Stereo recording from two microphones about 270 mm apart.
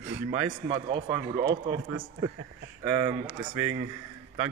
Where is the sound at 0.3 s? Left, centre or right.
Centre.